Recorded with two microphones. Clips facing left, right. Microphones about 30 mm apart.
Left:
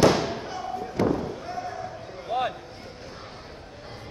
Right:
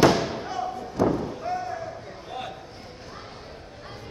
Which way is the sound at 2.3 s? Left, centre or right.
Left.